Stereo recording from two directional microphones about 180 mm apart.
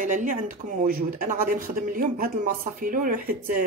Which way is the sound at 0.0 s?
45° right (ahead or behind).